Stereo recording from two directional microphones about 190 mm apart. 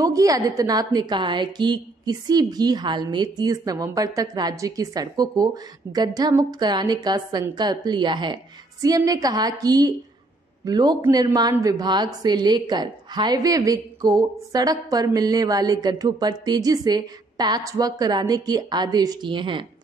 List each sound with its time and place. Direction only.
0.0 s a woman's voice: 20° right (ahead or behind)